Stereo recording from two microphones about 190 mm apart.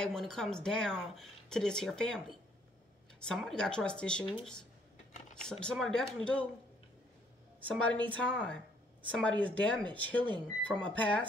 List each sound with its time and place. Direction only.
0.0 s speech: 5° left (ahead or behind)
5.3 s speech: 5° left (ahead or behind)
7.6 s speech: 5° left (ahead or behind)